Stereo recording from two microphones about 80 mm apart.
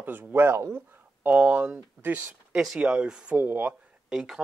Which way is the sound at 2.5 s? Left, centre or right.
Centre.